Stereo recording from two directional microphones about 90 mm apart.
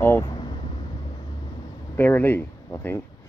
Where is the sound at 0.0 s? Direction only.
30° left (ahead or behind).